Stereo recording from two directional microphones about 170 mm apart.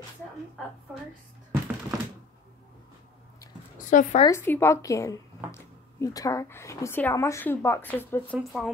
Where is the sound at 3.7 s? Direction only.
50° left (ahead or behind).